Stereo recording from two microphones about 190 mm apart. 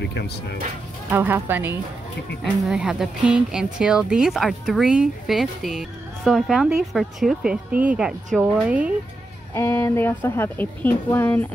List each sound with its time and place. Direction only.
0.0 s speech: 65° left (ahead or behind)
1.1 s speech: 10° right (ahead or behind)
9.5 s a woman's voice: 10° left (ahead or behind)